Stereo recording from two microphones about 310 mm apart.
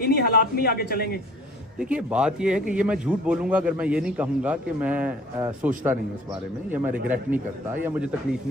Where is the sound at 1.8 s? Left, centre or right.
Centre.